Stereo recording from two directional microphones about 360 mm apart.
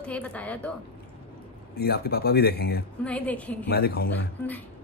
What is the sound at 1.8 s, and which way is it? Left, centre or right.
Speech, left.